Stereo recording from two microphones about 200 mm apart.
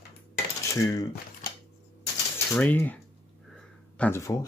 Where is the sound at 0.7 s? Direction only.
15° left (ahead or behind).